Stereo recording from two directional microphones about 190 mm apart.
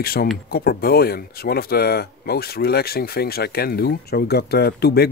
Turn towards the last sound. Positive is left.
turn(degrees=55)  # may be behind; listen again after turning